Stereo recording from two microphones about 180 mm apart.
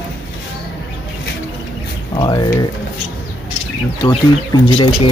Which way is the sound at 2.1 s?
25° left (ahead or behind).